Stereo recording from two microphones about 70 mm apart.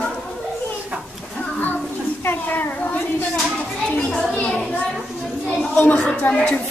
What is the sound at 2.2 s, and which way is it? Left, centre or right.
Speech, left.